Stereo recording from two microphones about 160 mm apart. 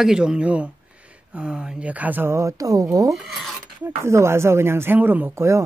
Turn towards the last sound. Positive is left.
turn(degrees=-15)  # may be behind; listen again after turning